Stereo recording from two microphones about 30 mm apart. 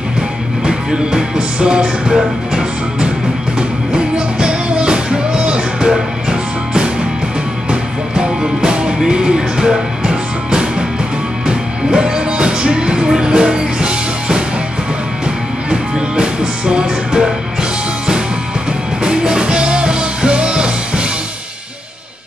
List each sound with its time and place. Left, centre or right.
0.7 s music: right
15.7 s music: right
19.0 s music: right